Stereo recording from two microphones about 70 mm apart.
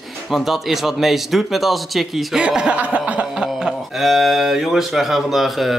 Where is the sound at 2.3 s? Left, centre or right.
Centre.